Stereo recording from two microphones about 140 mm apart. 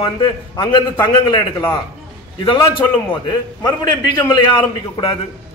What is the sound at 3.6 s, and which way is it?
A man's voice, 30° left (ahead or behind).